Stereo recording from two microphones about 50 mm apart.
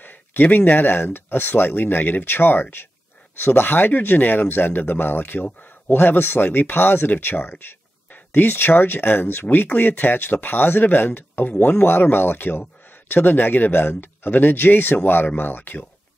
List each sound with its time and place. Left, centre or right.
0.0 s speech: left